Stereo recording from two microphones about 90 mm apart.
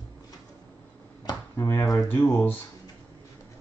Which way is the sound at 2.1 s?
25° left (ahead or behind).